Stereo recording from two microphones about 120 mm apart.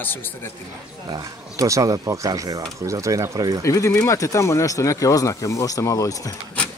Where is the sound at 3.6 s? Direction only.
25° left (ahead or behind).